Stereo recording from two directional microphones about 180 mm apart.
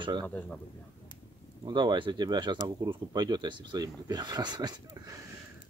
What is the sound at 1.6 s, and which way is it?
Speech, 25° right (ahead or behind).